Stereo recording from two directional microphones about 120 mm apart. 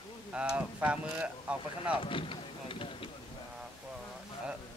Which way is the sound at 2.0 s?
45° left (ahead or behind).